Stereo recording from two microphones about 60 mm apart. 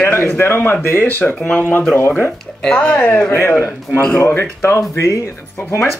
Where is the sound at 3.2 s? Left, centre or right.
Left.